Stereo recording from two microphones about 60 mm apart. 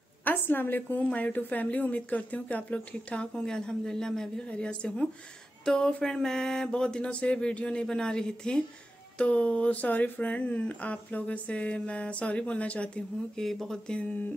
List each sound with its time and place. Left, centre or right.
0.2 s a woman's voice: left
13.4 s speech: centre